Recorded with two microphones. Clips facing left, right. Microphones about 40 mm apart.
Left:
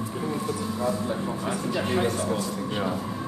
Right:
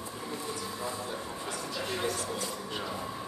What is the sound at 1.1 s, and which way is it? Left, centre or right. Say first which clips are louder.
Speech: left 9 dB; left.